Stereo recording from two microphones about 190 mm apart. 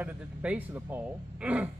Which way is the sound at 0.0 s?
5° right (ahead or behind).